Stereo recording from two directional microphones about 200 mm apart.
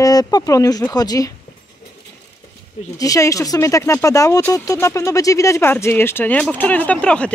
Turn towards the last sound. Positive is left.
turn(degrees=5)  # may be behind; listen again after turning